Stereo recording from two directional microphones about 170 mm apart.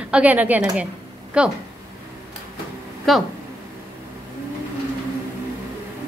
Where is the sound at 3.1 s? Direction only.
Centre (ahead or behind).